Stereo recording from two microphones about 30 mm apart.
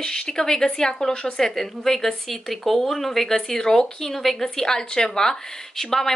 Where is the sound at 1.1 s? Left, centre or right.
Left.